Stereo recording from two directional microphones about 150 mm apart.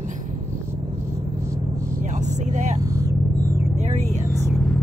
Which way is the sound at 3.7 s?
50° right (ahead or behind).